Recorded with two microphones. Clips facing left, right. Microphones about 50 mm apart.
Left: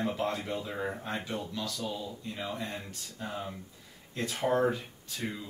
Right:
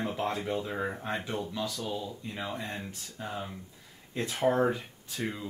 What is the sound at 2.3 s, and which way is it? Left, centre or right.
Speech, centre.